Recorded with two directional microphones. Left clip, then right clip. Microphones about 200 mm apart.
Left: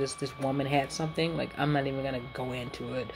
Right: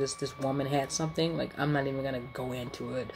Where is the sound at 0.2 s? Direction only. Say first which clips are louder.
Even; 5° right (ahead or behind).